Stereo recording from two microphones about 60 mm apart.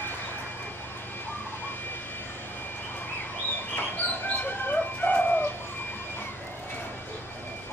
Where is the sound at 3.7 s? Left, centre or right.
Left.